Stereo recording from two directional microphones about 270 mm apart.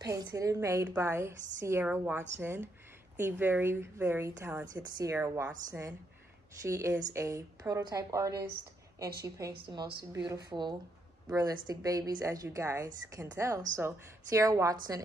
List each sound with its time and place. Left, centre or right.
0.0 s a woman's voice: centre
9.7 s a woman's voice: centre